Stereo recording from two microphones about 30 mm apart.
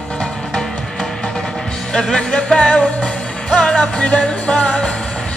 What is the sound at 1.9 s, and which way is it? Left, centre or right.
Music, centre.